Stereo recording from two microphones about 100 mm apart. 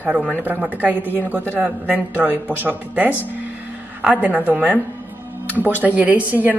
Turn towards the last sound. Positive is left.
turn(degrees=-15)  # may be behind; listen again after turning